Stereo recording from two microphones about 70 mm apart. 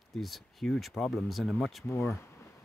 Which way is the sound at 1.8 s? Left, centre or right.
Left.